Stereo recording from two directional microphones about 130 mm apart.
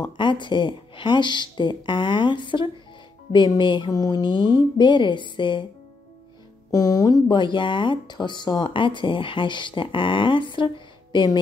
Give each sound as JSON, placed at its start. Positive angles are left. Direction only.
{"t": 0.0, "sound": "speech", "side_deg": 35}
{"t": 6.7, "sound": "speech", "side_deg": 25}